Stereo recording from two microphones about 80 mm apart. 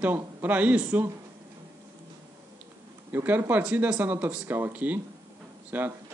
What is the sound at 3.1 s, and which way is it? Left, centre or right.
A man's voice, right.